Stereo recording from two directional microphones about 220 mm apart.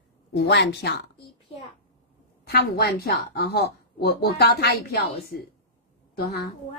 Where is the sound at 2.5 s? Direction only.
45° left (ahead or behind).